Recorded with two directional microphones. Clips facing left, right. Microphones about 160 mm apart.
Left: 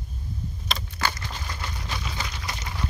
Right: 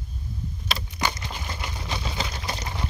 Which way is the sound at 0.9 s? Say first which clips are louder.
Right 1 dB; 20° right (ahead or behind).